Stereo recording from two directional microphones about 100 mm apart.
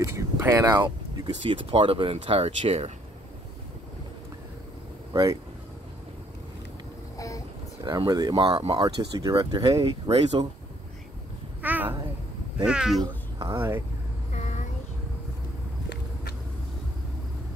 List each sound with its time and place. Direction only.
0.0 s speech: 30° right (ahead or behind)
0.7 s speech: 50° right (ahead or behind); by 2.9 s 85° right
7.2 s boat: 35° left (ahead or behind)
7.8 s speech: 45° right (ahead or behind)
8.5 s speech: 70° right (ahead or behind)
8.8 s speech: 35° right (ahead or behind)
10.1 s speech: 85° right
11.6 s cat: 20° right (ahead or behind)
12.6 s speech: 5° right (ahead or behind)
13.0 s cat: 50° right (ahead or behind)
13.6 s speech: 25° right (ahead or behind)